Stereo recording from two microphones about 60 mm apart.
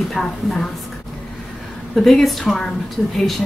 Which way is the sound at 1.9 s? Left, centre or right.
Centre.